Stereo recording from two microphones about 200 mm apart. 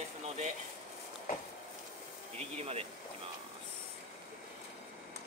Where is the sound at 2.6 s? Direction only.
30° right (ahead or behind).